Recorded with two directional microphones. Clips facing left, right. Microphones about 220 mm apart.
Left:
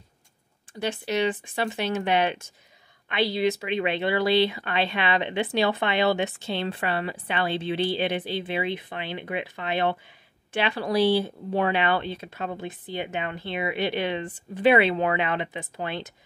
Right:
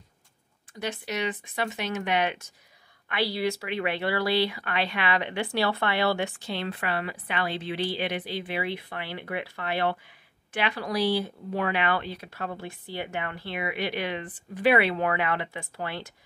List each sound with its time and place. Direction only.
0.7 s speech: 30° left (ahead or behind)